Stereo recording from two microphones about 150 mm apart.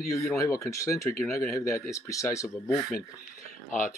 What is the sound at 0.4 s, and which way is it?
A man's voice, 20° left (ahead or behind).